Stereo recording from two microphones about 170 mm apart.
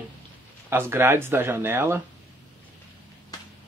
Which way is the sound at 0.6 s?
15° right (ahead or behind).